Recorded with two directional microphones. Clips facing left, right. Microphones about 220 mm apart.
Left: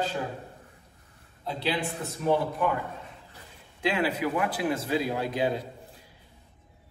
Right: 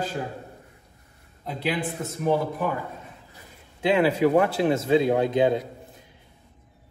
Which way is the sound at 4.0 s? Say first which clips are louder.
Right 10 dB; 30° right (ahead or behind).